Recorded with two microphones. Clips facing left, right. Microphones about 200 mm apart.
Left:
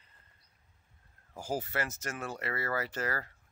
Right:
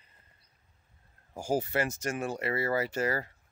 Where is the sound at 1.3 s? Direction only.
15° right (ahead or behind).